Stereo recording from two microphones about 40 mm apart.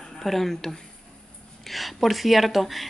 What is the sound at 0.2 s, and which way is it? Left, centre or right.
Speech, centre.